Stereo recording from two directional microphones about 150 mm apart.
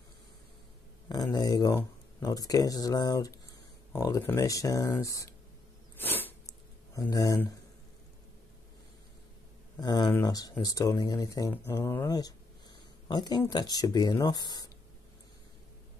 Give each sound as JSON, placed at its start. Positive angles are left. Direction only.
{"t": 1.0, "sound": "speech", "side_deg": 25}
{"t": 5.9, "sound": "a sound", "side_deg": 10}
{"t": 6.9, "sound": "speech", "side_deg": 20}
{"t": 9.8, "sound": "speech", "side_deg": 30}